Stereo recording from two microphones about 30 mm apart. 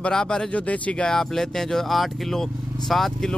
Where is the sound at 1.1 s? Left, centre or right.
Centre.